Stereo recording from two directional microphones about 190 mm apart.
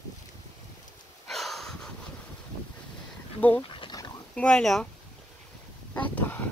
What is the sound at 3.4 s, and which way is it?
Speech, 10° left (ahead or behind).